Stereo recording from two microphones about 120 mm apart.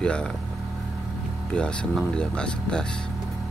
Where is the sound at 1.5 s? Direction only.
10° left (ahead or behind).